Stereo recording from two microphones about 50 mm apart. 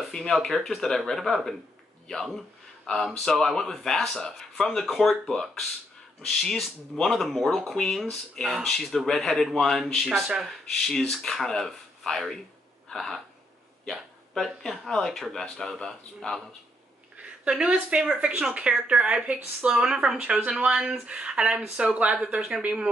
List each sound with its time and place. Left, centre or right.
0.1 s speech: centre
7.5 s speech: centre
10.0 s speech: centre
10.4 s speech: centre
14.3 s speech: centre
17.8 s speech: centre
22.3 s speech: centre